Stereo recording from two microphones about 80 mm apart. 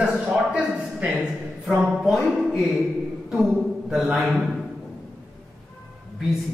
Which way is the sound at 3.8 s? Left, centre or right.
Centre.